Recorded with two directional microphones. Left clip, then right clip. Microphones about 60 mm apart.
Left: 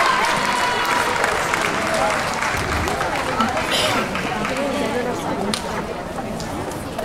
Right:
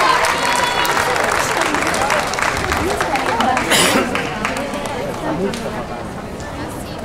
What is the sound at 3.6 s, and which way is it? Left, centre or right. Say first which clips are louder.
Run: right 5 dB; right.